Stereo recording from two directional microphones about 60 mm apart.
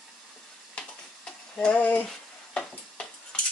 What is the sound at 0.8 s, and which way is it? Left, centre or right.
Stir, centre.